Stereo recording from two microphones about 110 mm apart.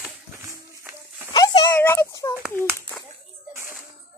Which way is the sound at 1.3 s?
40° left (ahead or behind).